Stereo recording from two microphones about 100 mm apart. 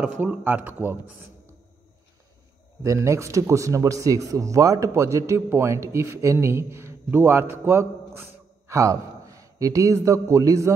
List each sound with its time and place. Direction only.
0.0 s speech: 15° right (ahead or behind)
2.8 s a man's voice: 30° right (ahead or behind)